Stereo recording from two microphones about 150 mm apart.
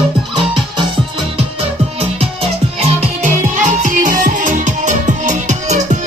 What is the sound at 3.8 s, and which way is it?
Music, 60° right (ahead or behind).